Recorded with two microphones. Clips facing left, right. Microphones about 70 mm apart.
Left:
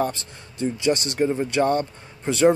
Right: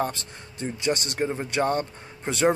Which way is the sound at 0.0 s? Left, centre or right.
Right.